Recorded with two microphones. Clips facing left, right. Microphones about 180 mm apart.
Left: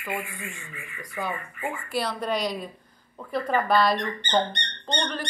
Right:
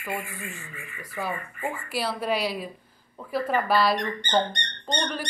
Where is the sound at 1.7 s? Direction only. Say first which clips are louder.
Left 1 dB; 10° right (ahead or behind).